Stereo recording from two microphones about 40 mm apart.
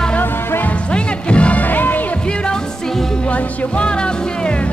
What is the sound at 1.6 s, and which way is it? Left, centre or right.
Music, left.